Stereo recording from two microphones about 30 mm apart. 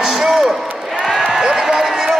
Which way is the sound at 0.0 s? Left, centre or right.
Centre.